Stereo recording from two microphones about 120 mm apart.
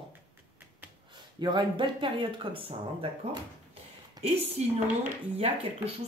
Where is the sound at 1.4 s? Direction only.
40° right (ahead or behind).